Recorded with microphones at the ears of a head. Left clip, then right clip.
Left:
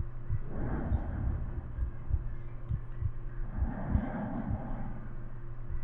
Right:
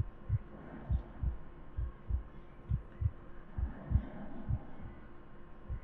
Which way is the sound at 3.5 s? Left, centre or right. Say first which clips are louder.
Left 8 dB; left.